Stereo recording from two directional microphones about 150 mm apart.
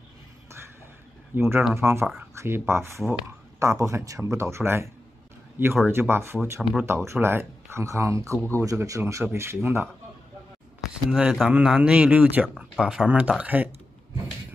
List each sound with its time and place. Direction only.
1.3 s speech: 15° right (ahead or behind)
5.9 s speech: 15° right (ahead or behind)
6.6 s speech: centre (ahead or behind)
6.9 s speech: 15° right (ahead or behind)
11.1 s speech: 5° right (ahead or behind)